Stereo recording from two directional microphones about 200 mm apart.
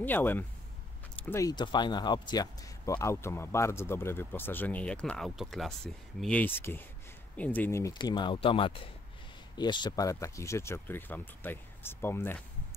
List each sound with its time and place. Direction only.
0.0 s speech: 10° left (ahead or behind)